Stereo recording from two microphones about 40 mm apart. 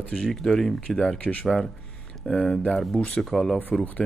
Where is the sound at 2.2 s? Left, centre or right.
Left.